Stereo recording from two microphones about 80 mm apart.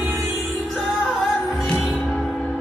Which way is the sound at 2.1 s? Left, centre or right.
Centre.